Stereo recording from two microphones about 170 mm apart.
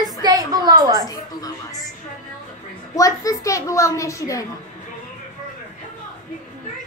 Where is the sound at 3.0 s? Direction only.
20° left (ahead or behind).